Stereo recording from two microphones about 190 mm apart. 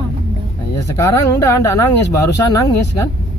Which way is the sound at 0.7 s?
15° left (ahead or behind).